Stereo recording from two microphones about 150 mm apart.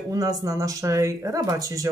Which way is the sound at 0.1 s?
25° right (ahead or behind).